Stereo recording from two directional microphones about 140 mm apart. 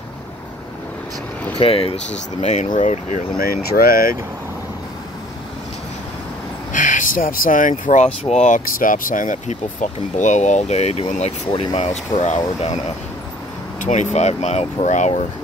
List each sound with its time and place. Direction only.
1.6 s speech: 45° left (ahead or behind)
2.4 s speech: 55° left (ahead or behind); by 4.2 s 90° left
6.7 s speech: 65° left (ahead or behind)
8.2 s speech: 55° left (ahead or behind)
13.7 s speech: 60° left (ahead or behind)